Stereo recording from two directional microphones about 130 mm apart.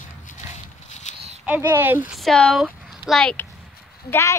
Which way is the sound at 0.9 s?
60° left (ahead or behind).